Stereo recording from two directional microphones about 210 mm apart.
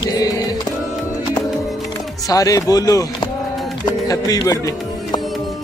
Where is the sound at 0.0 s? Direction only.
20° left (ahead or behind).